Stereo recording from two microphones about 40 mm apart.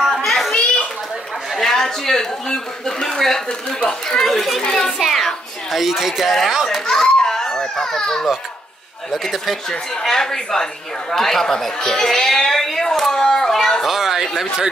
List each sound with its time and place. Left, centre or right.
0.0 s children playing: centre
1.5 s speech: centre
3.2 s a child's voice: centre
3.4 s speech: centre
4.3 s speech: centre
4.6 s a child's voice: centre
5.0 s child singing: centre
5.7 s speech: centre
6.9 s children playing: centre
9.2 s speech: centre
9.7 s a woman's voice: centre
13.8 s speech: centre